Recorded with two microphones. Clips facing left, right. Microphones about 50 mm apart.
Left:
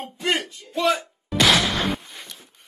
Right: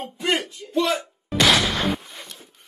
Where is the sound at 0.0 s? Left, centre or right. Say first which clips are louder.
Right 1 dB; centre.